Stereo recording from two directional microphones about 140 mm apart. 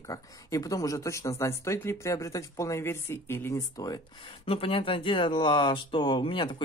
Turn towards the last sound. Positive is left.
turn(degrees=35)  # may be behind; listen again after turning